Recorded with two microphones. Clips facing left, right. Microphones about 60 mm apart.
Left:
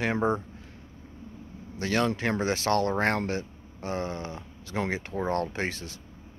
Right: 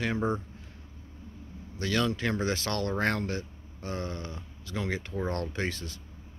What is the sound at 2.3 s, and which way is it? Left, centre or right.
Speech, left.